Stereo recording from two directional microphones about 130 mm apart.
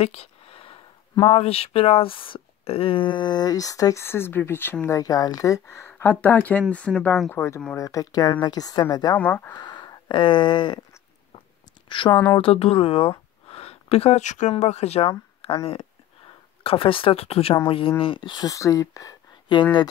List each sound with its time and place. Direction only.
0.0 s speech: 55° left (ahead or behind); by 4.7 s 15° left (ahead or behind)
4.8 s speech: 25° left (ahead or behind)
9.1 s speech: 10° left (ahead or behind)
9.6 s a sound: 35° left (ahead or behind)
11.9 s speech: 40° left (ahead or behind)
13.5 s a sound: 50° left (ahead or behind); by 14.5 s 65° left (ahead or behind)
14.5 s speech: 60° left (ahead or behind); by 19.9 s 35° left (ahead or behind)